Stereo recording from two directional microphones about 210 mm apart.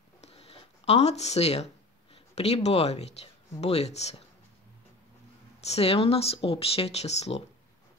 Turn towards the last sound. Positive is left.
turn(degrees=30)  # may be behind; listen again after turning